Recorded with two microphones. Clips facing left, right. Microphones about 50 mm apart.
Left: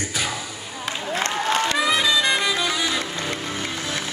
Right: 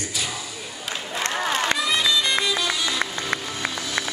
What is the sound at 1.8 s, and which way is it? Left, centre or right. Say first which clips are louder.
Music: left 2 dB; left.